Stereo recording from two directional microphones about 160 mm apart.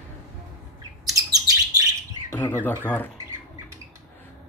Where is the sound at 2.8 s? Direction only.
10° left (ahead or behind).